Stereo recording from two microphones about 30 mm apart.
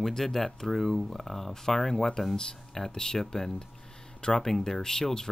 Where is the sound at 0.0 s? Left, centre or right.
Centre.